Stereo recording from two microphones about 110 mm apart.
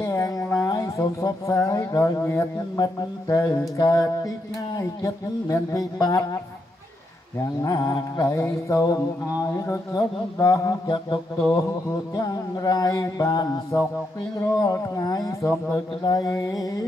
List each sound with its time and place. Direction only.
0.0 s speech: 30° left (ahead or behind)
7.6 s speech: 35° left (ahead or behind)
12.2 s speech: 35° left (ahead or behind)